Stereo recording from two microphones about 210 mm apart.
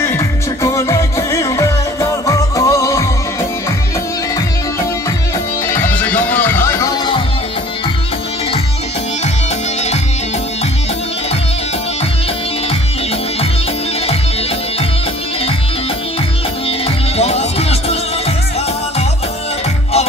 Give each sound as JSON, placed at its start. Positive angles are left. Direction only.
{"t": 0.0, "sound": "music", "side_deg": 15}
{"t": 5.7, "sound": "music", "side_deg": 10}
{"t": 16.6, "sound": "music", "side_deg": 30}